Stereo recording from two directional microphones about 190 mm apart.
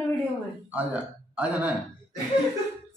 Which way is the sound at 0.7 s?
10° right (ahead or behind).